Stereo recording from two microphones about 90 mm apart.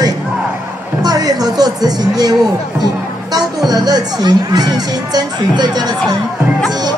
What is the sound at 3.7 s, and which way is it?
Speech, 45° right (ahead or behind).